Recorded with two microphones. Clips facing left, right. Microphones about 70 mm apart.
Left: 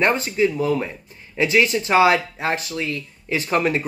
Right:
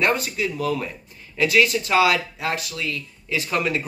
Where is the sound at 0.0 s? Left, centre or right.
Left.